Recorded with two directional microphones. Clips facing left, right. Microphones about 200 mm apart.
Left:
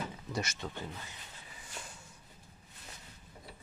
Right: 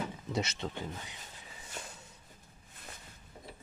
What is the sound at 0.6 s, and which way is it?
Speech, 15° right (ahead or behind).